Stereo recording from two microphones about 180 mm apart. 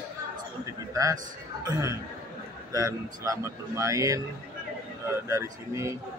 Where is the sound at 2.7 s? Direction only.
20° right (ahead or behind).